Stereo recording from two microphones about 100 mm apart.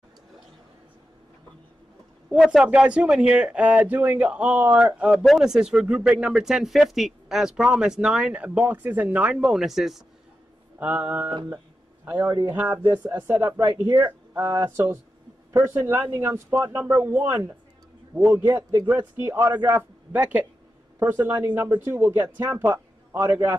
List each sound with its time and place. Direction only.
2.2 s speech: 10° right (ahead or behind)
5.1 s speech: centre (ahead or behind)
10.8 s speech: 15° right (ahead or behind)
11.4 s a sound: 25° right (ahead or behind)
12.3 s speech: 40° right (ahead or behind)
13.0 s a man's voice: 20° right (ahead or behind)
13.8 s speech: 45° right (ahead or behind)
15.5 s a man's voice: 25° right (ahead or behind)
18.4 s speech: 35° right (ahead or behind)
18.9 s a man's voice: 20° right (ahead or behind)